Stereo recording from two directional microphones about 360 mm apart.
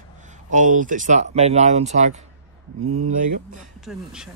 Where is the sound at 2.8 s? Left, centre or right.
Right.